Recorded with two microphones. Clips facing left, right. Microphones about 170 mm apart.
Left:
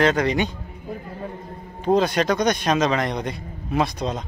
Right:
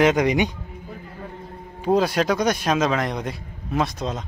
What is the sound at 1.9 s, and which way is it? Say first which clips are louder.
Speech: even; 5° right (ahead or behind).